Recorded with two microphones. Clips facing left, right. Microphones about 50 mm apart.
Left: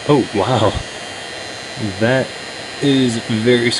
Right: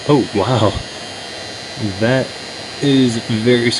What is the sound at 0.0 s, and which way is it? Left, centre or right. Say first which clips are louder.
Speech: even; centre.